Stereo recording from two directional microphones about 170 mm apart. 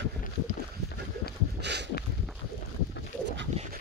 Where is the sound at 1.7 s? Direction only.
90° right.